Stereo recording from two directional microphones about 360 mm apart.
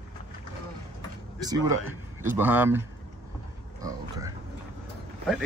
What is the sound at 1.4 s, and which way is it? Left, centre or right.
Speech, centre.